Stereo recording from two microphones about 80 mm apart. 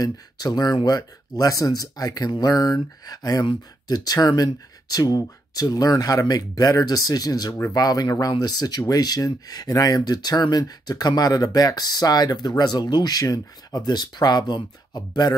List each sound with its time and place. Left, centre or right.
0.0 s speech: left
13.2 s speech: left